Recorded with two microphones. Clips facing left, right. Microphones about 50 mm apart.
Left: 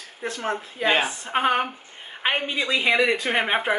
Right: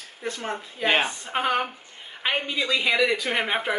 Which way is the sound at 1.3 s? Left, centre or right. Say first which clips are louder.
Left 4 dB; centre.